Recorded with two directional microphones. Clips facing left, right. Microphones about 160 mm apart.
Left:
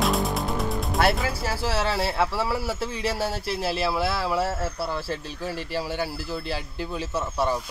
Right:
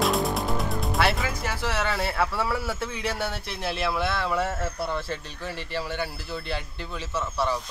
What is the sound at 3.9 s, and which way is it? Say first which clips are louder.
Speech: left 1 dB; 5° left (ahead or behind).